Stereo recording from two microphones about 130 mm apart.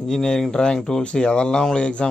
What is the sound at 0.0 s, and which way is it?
Speech, 5° left (ahead or behind).